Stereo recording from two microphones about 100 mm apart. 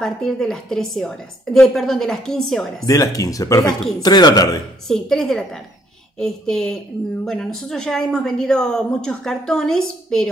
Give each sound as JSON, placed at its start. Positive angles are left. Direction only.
{"t": 0.0, "sound": "a woman's voice", "side_deg": 5}
{"t": 2.9, "sound": "speech", "side_deg": 35}
{"t": 4.8, "sound": "a woman's voice", "side_deg": 5}